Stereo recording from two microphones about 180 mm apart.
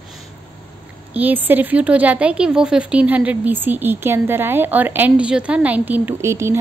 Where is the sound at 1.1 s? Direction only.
10° right (ahead or behind).